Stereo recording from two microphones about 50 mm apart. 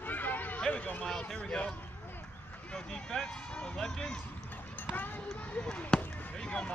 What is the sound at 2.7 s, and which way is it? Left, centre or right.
Speech, centre.